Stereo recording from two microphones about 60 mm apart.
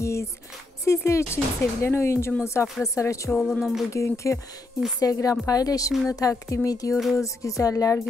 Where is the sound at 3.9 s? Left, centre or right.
Left.